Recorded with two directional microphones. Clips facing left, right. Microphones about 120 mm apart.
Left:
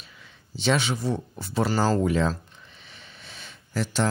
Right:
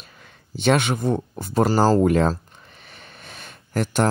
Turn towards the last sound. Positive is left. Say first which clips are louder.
# right 5 dB
turn(degrees=-55)  # may be behind; listen again after turning